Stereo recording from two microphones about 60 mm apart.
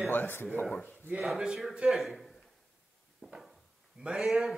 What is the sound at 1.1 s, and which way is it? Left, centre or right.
A man's voice, centre.